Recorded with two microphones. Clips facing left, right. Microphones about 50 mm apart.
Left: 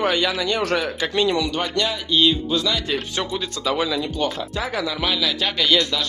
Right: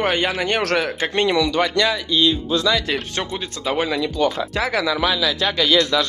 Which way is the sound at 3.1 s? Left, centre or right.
Right.